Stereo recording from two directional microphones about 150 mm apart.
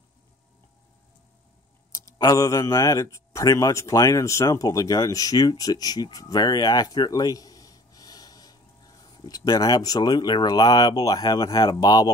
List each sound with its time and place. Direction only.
2.0 s speech: 25° left (ahead or behind)